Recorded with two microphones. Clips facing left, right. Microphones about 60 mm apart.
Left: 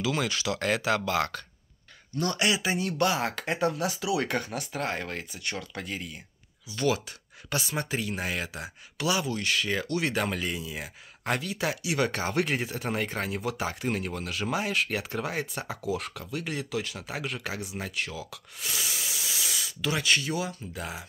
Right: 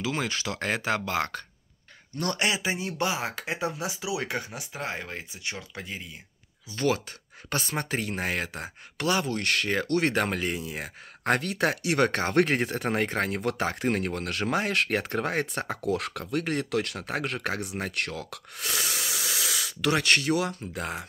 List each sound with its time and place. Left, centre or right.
0.0 s speech: right
2.1 s speech: right
2.4 s speech: right
6.7 s speech: right